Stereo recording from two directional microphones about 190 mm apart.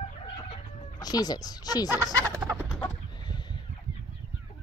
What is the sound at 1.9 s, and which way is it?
Fowl, 20° right (ahead or behind).